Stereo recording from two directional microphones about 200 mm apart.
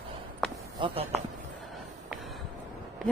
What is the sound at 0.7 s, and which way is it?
Speech, 25° right (ahead or behind).